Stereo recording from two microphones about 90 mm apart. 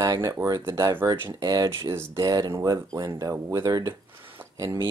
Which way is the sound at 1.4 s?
45° right (ahead or behind).